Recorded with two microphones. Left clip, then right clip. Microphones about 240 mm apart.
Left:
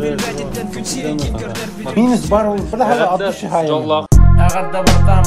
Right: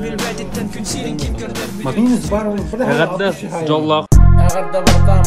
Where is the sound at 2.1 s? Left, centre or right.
Left.